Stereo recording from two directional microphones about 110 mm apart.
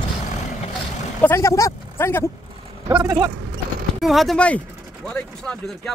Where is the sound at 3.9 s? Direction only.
Centre (ahead or behind).